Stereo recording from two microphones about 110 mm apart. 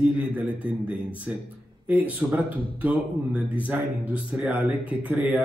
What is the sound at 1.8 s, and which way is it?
Speech, 15° right (ahead or behind).